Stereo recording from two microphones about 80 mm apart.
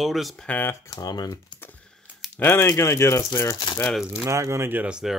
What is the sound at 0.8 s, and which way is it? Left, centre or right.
Speech, left.